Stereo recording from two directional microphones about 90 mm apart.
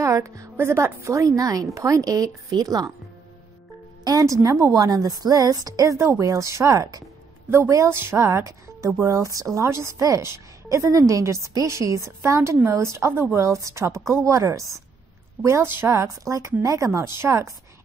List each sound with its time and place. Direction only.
0.0 s a woman's voice: 35° right (ahead or behind)
4.0 s a woman's voice: 40° right (ahead or behind)